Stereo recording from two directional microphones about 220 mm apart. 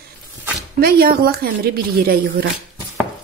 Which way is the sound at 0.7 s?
45° right (ahead or behind).